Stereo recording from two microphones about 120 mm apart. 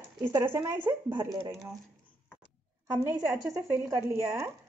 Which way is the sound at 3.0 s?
20° right (ahead or behind).